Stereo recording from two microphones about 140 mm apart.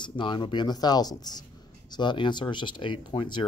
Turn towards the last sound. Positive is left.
turn(degrees=35)  # may be behind; listen again after turning